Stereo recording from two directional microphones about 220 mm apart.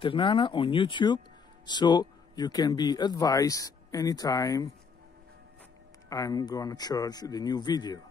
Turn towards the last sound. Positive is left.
turn(degrees=20)  # may be behind; listen again after turning